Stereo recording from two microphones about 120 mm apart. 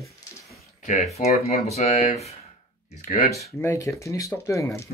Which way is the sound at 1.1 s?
65° left (ahead or behind).